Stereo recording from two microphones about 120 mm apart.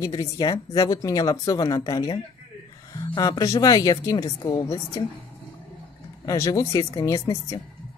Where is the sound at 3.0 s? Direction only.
35° left (ahead or behind).